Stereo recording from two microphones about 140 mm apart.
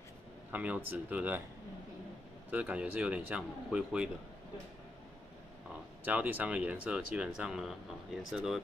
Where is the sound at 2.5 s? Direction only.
10° right (ahead or behind).